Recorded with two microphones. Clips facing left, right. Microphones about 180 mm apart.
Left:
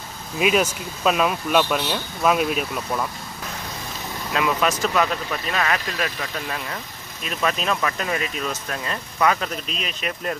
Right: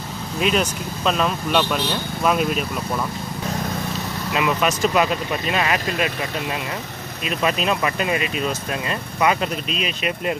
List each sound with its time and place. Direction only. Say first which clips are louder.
0.4 s speech: left 1 dB; 5° left (ahead or behind)
4.3 s speech: right 1 dB; 5° right (ahead or behind)
4.8 s speech: right 3 dB; 15° right (ahead or behind)
7.2 s speech: right 2 dB; 15° right (ahead or behind)